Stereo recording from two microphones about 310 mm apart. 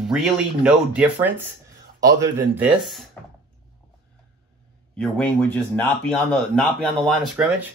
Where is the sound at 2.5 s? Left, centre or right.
Centre.